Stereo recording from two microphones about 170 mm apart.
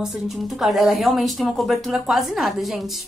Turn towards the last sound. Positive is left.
turn(degrees=0)  # may be behind; listen again after turning